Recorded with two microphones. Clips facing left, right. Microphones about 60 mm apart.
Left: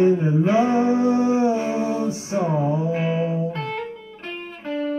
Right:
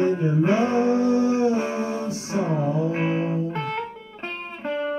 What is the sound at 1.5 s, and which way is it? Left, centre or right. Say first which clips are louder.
Music: left 2 dB; right.